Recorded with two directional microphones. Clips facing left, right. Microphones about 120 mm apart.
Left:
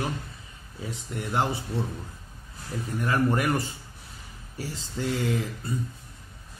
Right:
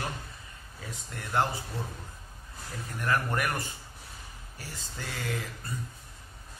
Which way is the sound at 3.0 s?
20° left (ahead or behind).